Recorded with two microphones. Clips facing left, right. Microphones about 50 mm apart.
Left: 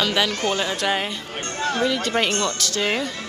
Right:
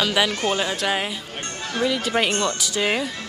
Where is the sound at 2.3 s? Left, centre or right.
Centre.